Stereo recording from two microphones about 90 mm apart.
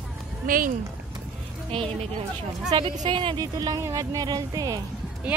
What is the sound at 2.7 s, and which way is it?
Speech, 60° right (ahead or behind).